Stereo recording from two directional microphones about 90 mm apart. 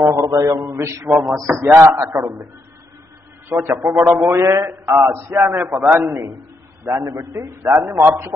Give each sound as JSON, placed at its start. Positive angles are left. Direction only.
{"t": 0.0, "sound": "a man's voice", "side_deg": -40}
{"t": 3.4, "sound": "speech", "side_deg": -30}
{"t": 4.3, "sound": "a man's voice", "side_deg": -35}
{"t": 5.5, "sound": "a man's voice", "side_deg": -25}